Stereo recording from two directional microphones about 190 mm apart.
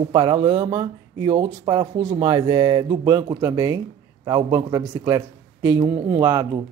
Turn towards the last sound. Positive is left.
turn(degrees=-25)  # may be behind; listen again after turning